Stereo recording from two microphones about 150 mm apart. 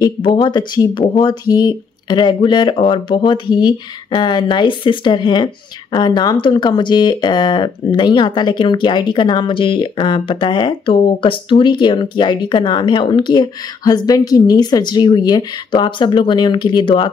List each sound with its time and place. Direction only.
0.0 s speech: 30° left (ahead or behind)